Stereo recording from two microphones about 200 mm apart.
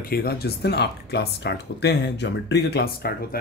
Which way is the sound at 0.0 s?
50° left (ahead or behind).